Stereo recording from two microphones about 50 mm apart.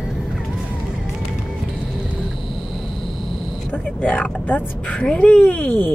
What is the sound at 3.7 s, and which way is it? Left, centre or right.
Speech, left.